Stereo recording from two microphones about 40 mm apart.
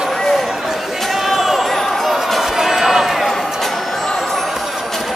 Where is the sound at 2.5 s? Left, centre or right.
Centre.